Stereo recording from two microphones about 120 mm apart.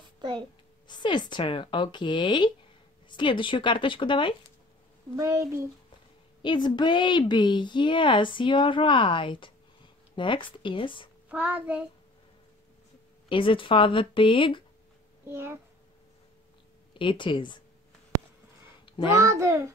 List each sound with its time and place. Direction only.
0.2 s a woman's voice: 35° right (ahead or behind)
0.8 s a woman's voice: 40° left (ahead or behind)
5.1 s a child's voice: 25° right (ahead or behind)
6.4 s a woman's voice: 40° left (ahead or behind)
11.2 s child singing: 15° right (ahead or behind)
13.3 s speech: 45° left (ahead or behind)
15.2 s a child's voice: 20° right (ahead or behind)
16.9 s speech: 45° left (ahead or behind)
19.1 s a child's voice: 25° right (ahead or behind)